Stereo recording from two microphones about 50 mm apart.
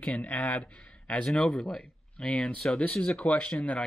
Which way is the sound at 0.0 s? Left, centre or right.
Left.